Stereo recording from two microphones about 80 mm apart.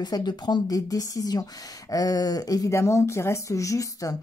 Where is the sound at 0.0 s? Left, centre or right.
Left.